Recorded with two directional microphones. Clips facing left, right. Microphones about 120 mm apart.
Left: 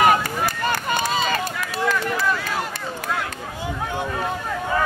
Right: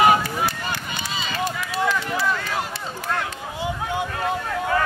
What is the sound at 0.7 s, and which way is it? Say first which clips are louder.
Run: left 7 dB; 50° left (ahead or behind).